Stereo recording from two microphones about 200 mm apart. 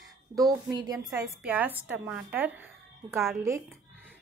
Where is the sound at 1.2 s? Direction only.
10° right (ahead or behind).